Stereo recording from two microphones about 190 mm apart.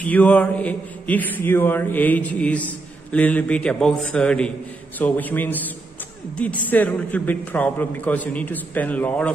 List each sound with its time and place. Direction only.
0.0 s a man's voice: 10° left (ahead or behind)